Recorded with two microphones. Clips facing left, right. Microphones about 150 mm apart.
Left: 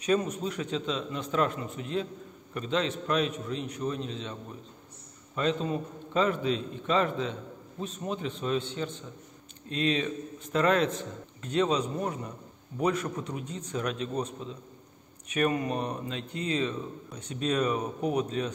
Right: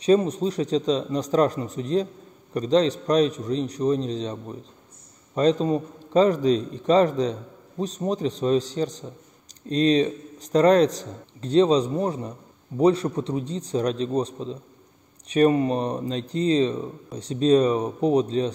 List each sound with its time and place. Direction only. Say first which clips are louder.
0.0 s speech: right 8 dB; 30° right (ahead or behind)